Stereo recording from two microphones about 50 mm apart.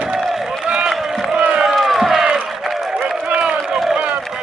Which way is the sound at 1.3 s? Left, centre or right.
Right.